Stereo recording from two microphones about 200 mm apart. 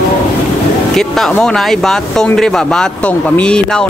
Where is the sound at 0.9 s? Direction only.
Centre (ahead or behind).